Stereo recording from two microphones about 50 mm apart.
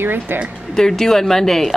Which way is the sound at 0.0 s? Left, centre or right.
Right.